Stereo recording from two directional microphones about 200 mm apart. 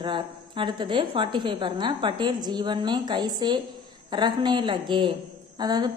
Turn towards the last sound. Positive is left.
turn(degrees=-20)  # may be behind; listen again after turning